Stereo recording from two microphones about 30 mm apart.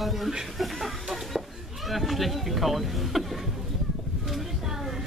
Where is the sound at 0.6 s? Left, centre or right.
Centre.